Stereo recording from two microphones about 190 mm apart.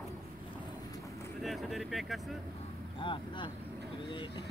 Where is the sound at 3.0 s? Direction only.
25° left (ahead or behind).